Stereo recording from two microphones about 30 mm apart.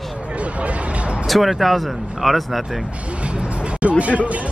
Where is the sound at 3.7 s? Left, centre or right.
Right.